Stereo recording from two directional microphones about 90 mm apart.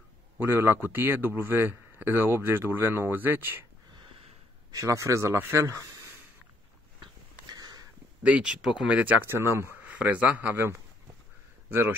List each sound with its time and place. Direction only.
0.4 s speech: 25° right (ahead or behind)
4.6 s speech: 40° right (ahead or behind)
7.0 s wheeze: 50° right (ahead or behind)
8.2 s speech: 10° right (ahead or behind)
9.2 s speech: 25° right (ahead or behind)
9.8 s speech: 15° right (ahead or behind)